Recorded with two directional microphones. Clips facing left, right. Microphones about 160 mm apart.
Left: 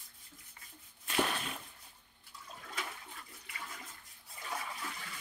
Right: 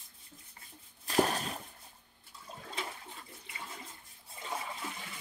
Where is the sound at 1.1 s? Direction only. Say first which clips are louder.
Right 5 dB; 40° right (ahead or behind).